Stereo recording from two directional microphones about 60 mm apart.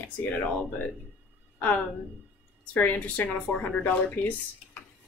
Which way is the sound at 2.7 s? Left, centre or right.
Left.